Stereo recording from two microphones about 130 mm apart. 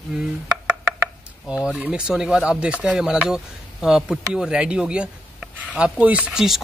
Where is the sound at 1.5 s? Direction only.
5° right (ahead or behind).